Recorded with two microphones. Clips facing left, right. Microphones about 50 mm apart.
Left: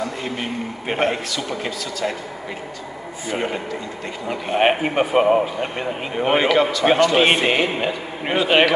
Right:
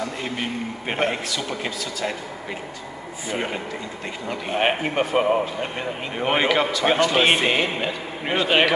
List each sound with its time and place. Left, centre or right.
0.0 s a man's voice: centre
3.3 s a man's voice: centre
4.3 s a man's voice: centre